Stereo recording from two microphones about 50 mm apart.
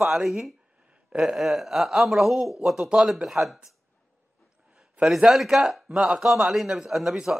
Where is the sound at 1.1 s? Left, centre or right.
Centre.